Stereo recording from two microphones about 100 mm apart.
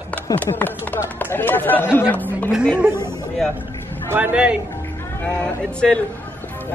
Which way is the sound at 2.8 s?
25° right (ahead or behind).